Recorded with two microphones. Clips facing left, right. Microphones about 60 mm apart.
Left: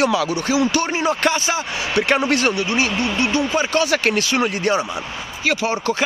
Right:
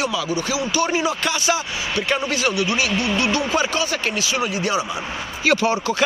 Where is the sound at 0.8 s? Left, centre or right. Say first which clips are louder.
Left 2 dB; left.